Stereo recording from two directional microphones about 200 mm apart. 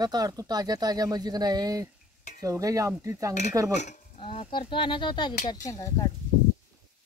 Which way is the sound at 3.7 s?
35° left (ahead or behind).